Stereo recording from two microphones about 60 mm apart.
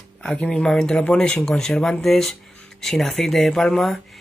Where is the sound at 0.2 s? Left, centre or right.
Left.